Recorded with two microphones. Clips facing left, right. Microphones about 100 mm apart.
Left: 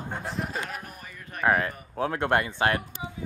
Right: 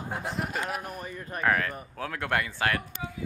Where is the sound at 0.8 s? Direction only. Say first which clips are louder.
Right 6 dB; 40° right (ahead or behind).